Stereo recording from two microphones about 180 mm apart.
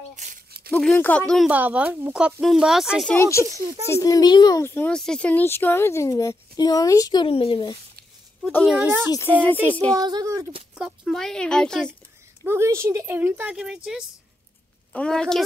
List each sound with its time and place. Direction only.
0.1 s a sound: 45° right (ahead or behind)
0.7 s speech: 5° left (ahead or behind)
1.5 s speech: 10° right (ahead or behind)
3.2 s speech: 15° left (ahead or behind)
8.8 s speech: 10° right (ahead or behind)
9.1 s speech: 10° left (ahead or behind)
9.9 s a woman's voice: 20° right (ahead or behind)
10.8 s speech: centre (ahead or behind)
12.4 s speech: 15° right (ahead or behind); by 15.4 s 5° left (ahead or behind)